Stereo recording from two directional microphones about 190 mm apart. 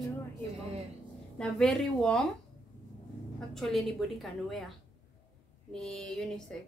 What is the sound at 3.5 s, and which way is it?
A woman's voice, centre (ahead or behind).